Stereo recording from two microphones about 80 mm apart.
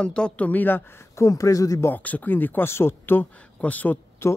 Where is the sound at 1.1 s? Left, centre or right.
Left.